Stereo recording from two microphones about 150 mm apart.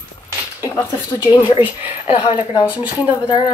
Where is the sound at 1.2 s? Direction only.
35° left (ahead or behind).